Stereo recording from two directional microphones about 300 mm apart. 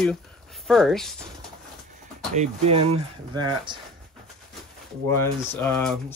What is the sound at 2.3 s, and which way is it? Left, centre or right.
Speech, right.